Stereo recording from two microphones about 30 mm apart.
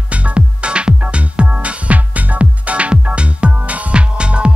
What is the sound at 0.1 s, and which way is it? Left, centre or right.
Music, right.